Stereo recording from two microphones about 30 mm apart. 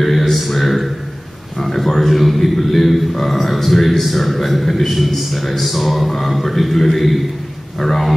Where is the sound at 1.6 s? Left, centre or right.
Centre.